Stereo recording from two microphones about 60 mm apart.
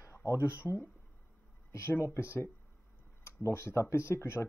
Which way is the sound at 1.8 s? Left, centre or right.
Left.